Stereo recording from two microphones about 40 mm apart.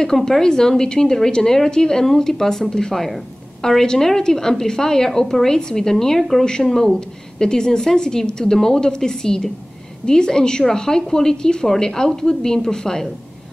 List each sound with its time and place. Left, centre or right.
0.0 s a woman's voice: centre